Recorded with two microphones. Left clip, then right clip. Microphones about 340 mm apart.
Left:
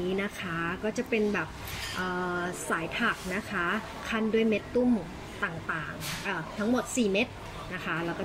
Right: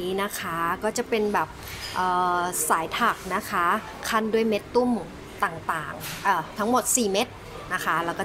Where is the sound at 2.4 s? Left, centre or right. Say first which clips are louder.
Right 7 dB; centre.